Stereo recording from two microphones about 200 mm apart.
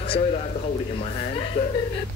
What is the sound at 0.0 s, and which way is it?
Speech, 30° left (ahead or behind).